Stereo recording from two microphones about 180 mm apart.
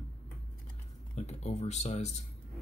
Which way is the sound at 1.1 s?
40° left (ahead or behind).